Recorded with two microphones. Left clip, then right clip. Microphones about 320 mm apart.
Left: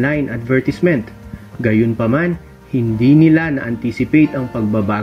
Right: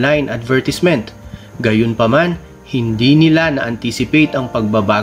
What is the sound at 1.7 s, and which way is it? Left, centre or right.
Speech, right.